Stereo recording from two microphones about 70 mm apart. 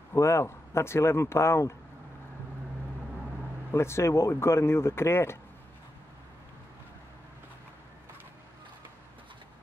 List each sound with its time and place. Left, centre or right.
0.1 s speech: left
3.7 s speech: left